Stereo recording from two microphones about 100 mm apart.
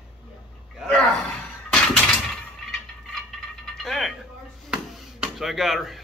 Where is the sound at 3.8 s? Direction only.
Centre (ahead or behind).